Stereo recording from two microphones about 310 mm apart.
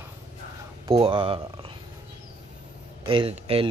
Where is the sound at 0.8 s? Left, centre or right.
Centre.